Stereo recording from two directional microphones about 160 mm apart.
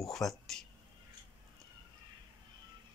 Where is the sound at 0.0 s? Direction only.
Centre (ahead or behind).